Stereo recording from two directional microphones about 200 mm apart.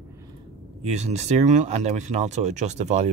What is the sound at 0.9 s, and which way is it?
Speech, 35° right (ahead or behind).